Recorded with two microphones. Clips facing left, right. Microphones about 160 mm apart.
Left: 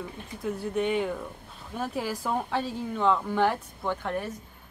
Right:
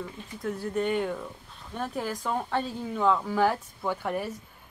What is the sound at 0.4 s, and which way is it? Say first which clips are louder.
A woman's voice: left 1 dB; centre (ahead or behind).